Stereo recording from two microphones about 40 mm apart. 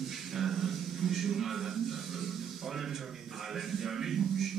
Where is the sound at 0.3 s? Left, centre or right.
Centre.